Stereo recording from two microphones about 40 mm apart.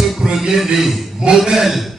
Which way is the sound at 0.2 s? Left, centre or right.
Centre.